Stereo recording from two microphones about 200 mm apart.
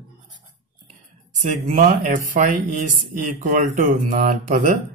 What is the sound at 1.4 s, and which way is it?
Speech, 40° right (ahead or behind).